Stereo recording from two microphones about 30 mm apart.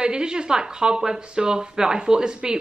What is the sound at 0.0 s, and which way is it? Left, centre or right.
Speech, right.